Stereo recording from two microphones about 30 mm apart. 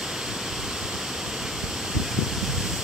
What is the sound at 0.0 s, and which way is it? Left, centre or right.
Waterfall, centre.